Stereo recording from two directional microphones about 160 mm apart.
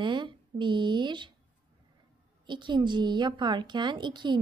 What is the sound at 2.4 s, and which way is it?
A woman's voice, 30° right (ahead or behind).